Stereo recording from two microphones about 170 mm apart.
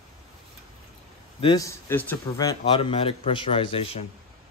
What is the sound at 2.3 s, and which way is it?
Speech, 25° left (ahead or behind).